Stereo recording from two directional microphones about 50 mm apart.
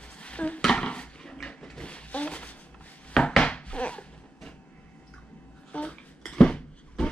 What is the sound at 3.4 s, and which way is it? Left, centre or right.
Chopping, left.